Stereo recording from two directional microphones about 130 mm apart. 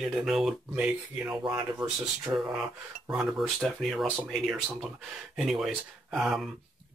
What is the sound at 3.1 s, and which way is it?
Speech, 5° right (ahead or behind).